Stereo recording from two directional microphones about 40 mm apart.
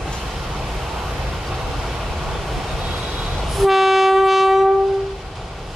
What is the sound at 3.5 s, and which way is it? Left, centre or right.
Train, centre.